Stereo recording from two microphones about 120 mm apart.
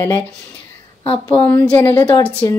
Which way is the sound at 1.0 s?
55° left (ahead or behind).